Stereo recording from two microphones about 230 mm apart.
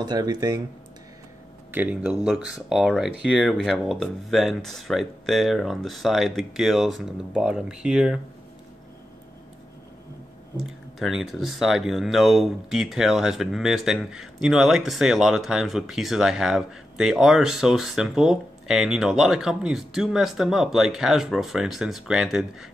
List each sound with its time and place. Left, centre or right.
0.0 s speech: centre
1.7 s speech: centre
10.6 s speech: centre